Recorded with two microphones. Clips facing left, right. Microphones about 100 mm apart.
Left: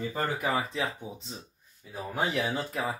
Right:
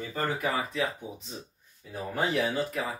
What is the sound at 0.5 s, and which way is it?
Speech, 30° left (ahead or behind).